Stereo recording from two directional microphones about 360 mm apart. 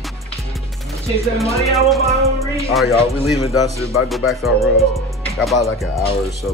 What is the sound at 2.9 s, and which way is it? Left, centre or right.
Speech, centre.